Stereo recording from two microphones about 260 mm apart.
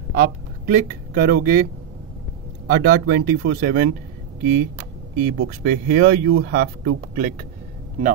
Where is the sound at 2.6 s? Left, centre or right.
Right.